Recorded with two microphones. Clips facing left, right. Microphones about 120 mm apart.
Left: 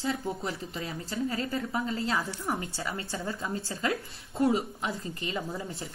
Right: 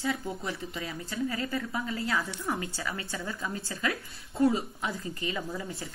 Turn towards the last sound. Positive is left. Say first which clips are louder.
# left 1 dB
turn(degrees=25)  # may be behind; listen again after turning